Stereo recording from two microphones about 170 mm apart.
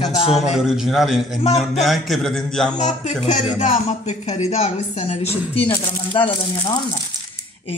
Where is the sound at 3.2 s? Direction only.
45° left (ahead or behind).